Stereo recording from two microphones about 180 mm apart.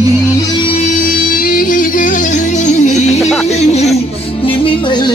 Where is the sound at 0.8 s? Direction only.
50° left (ahead or behind).